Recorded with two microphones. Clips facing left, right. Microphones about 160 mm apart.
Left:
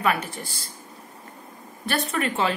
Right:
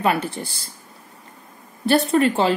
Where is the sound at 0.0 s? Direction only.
30° right (ahead or behind).